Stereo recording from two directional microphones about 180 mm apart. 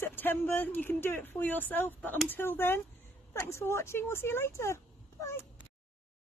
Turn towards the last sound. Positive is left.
turn(degrees=15)  # may be behind; listen again after turning